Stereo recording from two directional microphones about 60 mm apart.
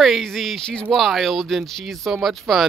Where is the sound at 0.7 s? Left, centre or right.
Centre.